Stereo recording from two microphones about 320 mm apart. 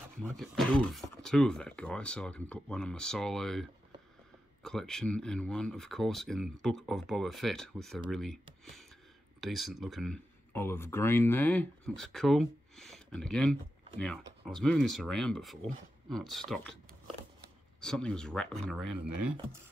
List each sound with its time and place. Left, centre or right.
0.2 s speech: centre
4.6 s speech: centre
9.4 s speech: centre
17.8 s speech: centre
18.9 s speech: right